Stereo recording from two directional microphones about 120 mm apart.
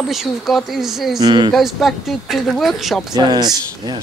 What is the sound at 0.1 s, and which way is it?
Speech, centre (ahead or behind).